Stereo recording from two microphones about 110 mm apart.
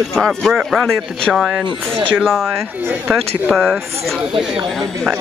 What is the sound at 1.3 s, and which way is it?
Speech, centre (ahead or behind).